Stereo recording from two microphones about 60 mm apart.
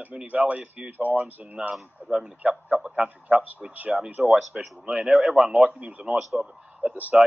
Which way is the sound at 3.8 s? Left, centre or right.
Centre.